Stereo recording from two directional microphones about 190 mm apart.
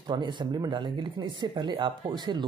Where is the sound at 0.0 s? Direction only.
25° right (ahead or behind).